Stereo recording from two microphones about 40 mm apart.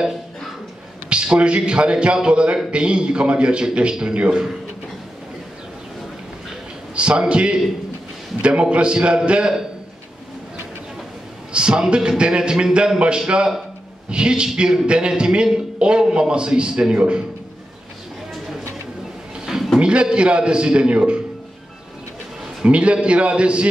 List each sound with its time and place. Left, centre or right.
1.1 s a man's voice: right
7.0 s a man's voice: right
11.5 s a man's voice: right
19.8 s a man's voice: right
22.6 s a man's voice: right